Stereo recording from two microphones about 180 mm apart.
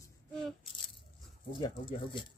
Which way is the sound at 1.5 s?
25° left (ahead or behind).